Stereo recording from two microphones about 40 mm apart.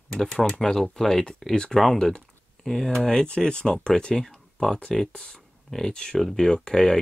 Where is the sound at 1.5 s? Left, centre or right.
Left.